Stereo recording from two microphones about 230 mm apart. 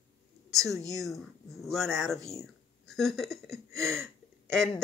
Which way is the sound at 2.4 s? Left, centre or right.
Centre.